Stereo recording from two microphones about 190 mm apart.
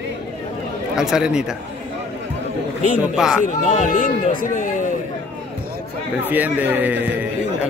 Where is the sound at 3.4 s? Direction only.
40° left (ahead or behind).